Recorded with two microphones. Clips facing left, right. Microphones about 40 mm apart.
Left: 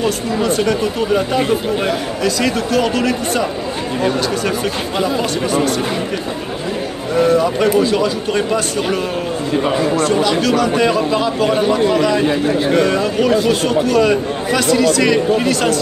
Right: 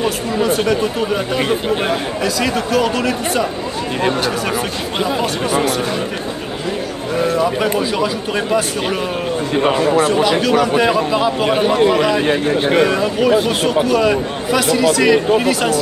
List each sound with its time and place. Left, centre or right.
0.0 s speech: centre
7.2 s speech: centre
9.6 s a man's voice: right
10.4 s a man's voice: centre
12.3 s a man's voice: right
12.8 s speech: centre